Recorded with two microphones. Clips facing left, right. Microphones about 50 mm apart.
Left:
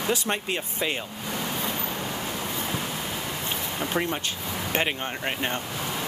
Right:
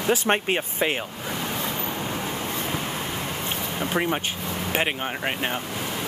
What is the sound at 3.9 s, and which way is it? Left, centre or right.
Speech, centre.